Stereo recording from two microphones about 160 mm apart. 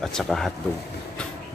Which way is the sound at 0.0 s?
Centre (ahead or behind).